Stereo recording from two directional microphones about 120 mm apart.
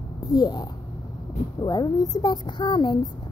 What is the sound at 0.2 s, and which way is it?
Speech, 35° left (ahead or behind).